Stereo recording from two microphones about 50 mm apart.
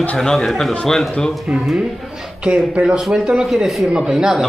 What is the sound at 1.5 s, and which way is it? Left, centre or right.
Speech, right.